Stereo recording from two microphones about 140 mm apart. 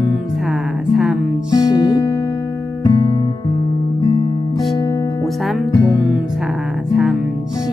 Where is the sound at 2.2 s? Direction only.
25° left (ahead or behind).